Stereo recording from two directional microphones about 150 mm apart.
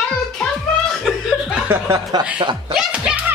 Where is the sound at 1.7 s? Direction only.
20° right (ahead or behind).